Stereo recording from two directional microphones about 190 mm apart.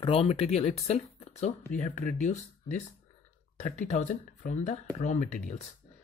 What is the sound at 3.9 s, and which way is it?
Speech, 40° left (ahead or behind).